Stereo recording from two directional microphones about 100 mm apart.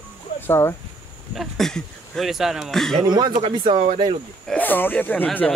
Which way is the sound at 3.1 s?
45° right (ahead or behind).